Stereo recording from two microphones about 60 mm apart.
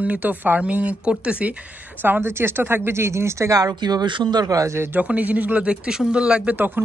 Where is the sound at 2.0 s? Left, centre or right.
Right.